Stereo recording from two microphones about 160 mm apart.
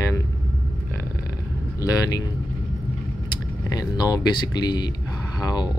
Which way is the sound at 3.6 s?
25° left (ahead or behind).